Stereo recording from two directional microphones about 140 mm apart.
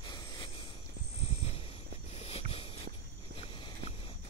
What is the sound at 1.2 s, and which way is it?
Dog, 45° left (ahead or behind).